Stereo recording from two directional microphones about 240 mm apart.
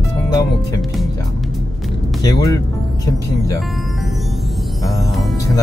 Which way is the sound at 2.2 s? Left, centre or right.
Centre.